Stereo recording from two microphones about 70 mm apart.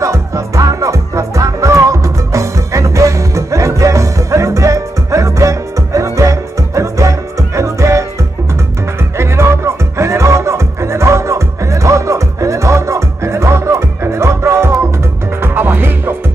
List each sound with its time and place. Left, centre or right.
0.0 s music: right
9.1 s music: right